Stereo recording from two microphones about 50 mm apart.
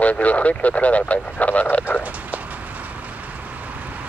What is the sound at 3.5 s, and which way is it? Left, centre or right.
Vehicle, right.